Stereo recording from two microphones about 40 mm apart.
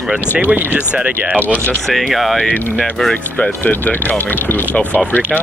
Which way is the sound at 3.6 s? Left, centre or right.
Left.